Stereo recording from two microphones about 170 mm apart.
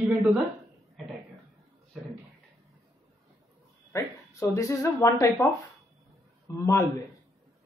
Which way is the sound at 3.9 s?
15° left (ahead or behind).